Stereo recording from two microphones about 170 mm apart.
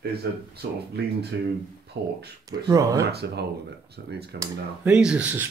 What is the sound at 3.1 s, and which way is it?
Speech, 75° right (ahead or behind).